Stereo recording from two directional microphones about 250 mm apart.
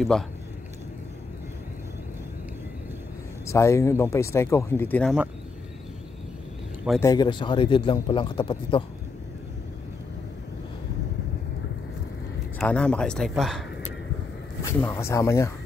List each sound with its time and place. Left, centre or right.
3.4 s speech: centre
7.0 s a man's voice: centre
12.5 s speech: centre